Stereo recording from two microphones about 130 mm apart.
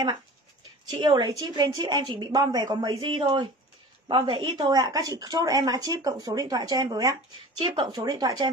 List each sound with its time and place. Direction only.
0.8 s a woman's voice: 35° right (ahead or behind)
8.0 s a woman's voice: 30° right (ahead or behind)